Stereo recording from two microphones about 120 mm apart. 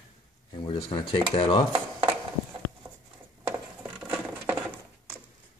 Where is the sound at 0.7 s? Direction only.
40° left (ahead or behind).